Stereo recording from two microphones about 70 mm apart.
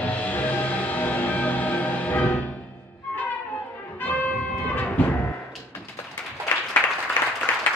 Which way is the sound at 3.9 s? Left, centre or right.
Left.